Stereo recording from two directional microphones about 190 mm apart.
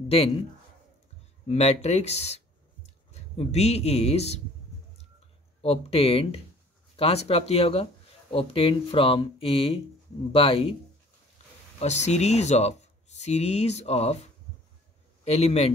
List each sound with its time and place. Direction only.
1.5 s speech: 35° left (ahead or behind)
5.6 s speech: 30° left (ahead or behind)
11.8 s speech: 35° left (ahead or behind)
15.2 s speech: 35° left (ahead or behind)